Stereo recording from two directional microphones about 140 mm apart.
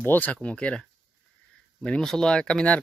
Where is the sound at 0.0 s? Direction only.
10° left (ahead or behind).